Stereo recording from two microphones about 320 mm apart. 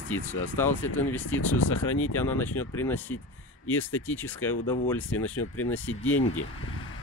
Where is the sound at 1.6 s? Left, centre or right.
Left.